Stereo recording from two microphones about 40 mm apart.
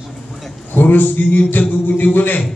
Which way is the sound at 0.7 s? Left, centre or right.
Left.